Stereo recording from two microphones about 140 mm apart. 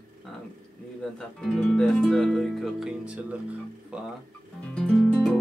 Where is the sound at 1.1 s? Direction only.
5° left (ahead or behind).